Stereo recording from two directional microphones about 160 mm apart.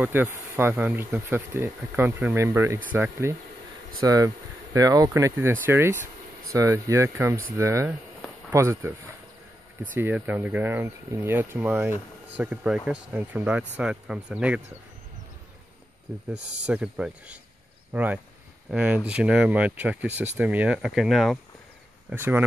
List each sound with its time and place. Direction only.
0.0 s speech: 10° right (ahead or behind)
9.9 s speech: 10° right (ahead or behind)
16.3 s speech: 90° right
16.6 s speech: 5° right (ahead or behind)
22.1 s speech: 10° right (ahead or behind)